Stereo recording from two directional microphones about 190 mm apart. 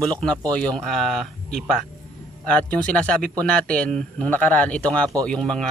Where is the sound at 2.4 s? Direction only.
5° left (ahead or behind).